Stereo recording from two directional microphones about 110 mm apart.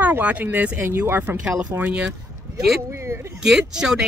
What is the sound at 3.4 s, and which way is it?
Speech, 5° right (ahead or behind).